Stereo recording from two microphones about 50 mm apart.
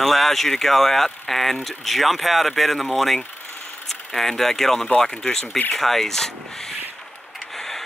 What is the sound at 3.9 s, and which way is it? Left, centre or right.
Speech, centre.